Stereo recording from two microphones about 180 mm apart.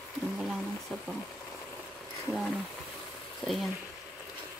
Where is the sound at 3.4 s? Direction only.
Centre (ahead or behind).